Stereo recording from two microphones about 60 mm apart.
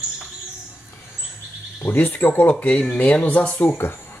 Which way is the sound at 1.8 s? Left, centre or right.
Left.